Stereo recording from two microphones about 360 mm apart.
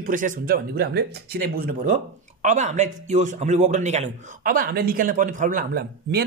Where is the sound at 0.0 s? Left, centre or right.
Right.